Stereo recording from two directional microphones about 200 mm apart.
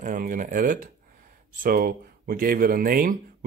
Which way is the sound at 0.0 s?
40° right (ahead or behind).